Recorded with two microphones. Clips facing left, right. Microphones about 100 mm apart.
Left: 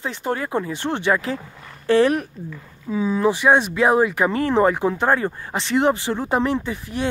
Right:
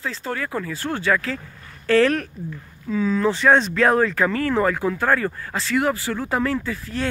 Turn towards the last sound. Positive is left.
turn(degrees=20)  # may be behind; listen again after turning